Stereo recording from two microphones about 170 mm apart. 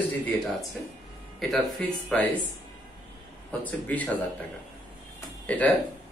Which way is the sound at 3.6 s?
10° left (ahead or behind).